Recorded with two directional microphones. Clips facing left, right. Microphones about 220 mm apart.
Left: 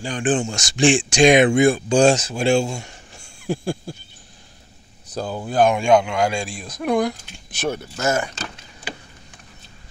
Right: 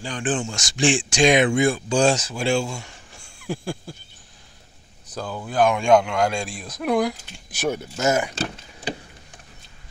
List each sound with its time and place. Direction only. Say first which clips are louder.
0.0 s speech: left 4 dB; 15° left (ahead or behind)
3.4 s a sound: left 4 dB; 25° left (ahead or behind)
5.1 s speech: left 3 dB; 30° left (ahead or behind)
5.8 s speech: left 1 dB; 5° left (ahead or behind); by 8.4 s 15° right (ahead or behind)